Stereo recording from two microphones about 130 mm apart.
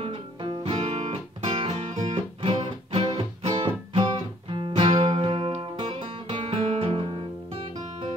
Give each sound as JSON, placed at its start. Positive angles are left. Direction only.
{"t": 0.0, "sound": "music", "side_deg": -45}